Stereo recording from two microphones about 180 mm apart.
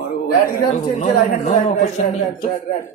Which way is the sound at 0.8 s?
35° left (ahead or behind).